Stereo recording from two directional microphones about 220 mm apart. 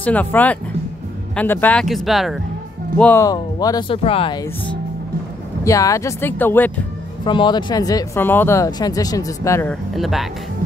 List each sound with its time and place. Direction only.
0.0 s speech: 5° left (ahead or behind)
3.0 s speech: 10° left (ahead or behind)
5.6 s speech: 15° left (ahead or behind)
7.2 s speech: 20° left (ahead or behind)
9.9 s speech: centre (ahead or behind)